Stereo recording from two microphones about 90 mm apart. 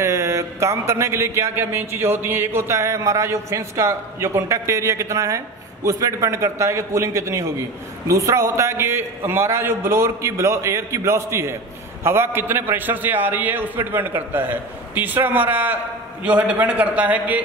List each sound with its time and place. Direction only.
0.0 s a man's voice: 35° right (ahead or behind); by 17.4 s 15° right (ahead or behind)